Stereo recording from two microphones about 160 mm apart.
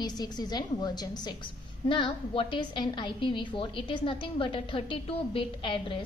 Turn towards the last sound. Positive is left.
turn(degrees=30)  # may be behind; listen again after turning